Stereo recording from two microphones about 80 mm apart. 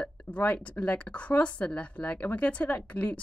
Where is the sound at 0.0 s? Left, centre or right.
Centre.